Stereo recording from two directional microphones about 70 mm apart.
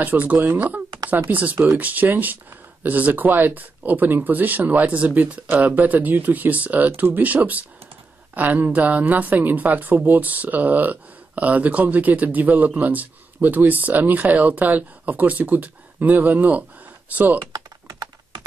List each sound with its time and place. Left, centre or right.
0.0 s speech: right